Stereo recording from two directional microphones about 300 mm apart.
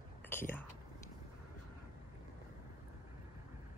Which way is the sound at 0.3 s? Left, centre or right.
Centre.